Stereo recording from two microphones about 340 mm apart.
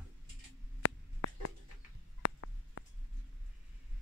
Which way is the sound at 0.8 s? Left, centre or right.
Left.